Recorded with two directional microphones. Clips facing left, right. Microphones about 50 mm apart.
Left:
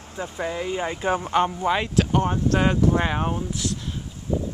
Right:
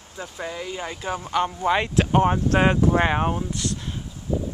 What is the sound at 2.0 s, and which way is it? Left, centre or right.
Speech, right.